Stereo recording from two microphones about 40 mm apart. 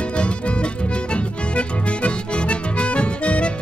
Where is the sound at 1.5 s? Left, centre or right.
Left.